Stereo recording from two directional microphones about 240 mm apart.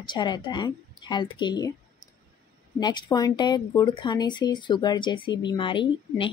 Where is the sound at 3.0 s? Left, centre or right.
Centre.